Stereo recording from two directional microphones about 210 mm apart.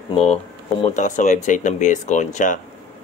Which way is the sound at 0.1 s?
30° left (ahead or behind).